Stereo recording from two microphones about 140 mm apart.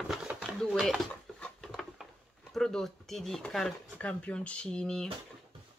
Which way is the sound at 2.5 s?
5° left (ahead or behind).